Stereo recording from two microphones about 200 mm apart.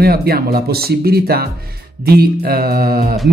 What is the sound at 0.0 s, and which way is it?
Speech, 50° right (ahead or behind).